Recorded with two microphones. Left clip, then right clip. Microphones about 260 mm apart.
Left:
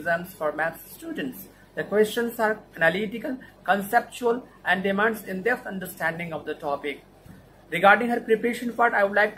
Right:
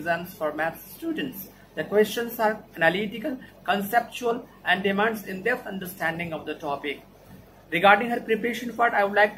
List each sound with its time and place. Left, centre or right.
0.4 s speech: centre